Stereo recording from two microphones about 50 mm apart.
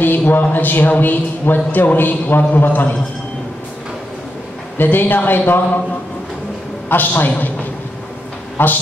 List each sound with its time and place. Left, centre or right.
0.0 s a man's voice: left
4.7 s speech: left
6.9 s a man's voice: left
8.6 s speech: left